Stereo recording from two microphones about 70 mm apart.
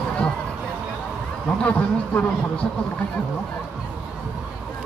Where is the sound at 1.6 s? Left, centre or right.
Left.